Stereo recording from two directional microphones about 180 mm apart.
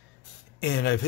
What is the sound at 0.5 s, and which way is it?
Speech, 80° left.